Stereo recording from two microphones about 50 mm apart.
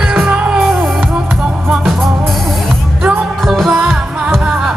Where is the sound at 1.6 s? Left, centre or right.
Centre.